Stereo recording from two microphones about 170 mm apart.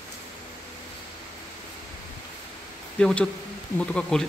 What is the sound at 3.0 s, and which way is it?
Speech, 5° left (ahead or behind).